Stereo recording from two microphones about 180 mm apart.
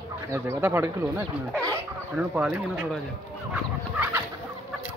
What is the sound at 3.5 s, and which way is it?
Fowl, 10° right (ahead or behind).